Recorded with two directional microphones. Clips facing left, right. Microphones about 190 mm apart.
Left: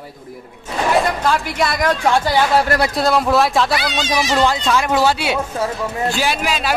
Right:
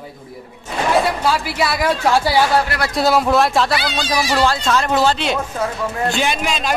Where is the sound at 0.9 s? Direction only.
5° right (ahead or behind).